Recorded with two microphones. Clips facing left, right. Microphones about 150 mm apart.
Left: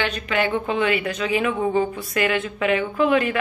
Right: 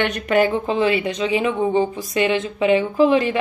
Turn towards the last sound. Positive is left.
turn(degrees=-30)  # may be behind; listen again after turning